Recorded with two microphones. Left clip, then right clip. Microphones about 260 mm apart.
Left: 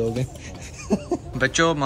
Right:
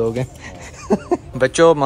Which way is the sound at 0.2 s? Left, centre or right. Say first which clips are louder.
Right 5 dB; right.